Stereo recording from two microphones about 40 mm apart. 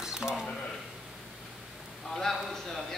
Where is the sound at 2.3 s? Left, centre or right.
Centre.